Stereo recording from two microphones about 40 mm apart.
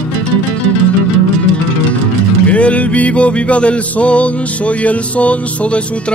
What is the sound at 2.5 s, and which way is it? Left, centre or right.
Speech, left.